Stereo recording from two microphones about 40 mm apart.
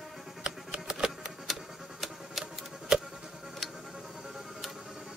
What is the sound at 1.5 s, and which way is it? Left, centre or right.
Music, centre.